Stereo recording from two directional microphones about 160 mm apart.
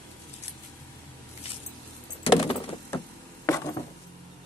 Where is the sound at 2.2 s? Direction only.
35° left (ahead or behind).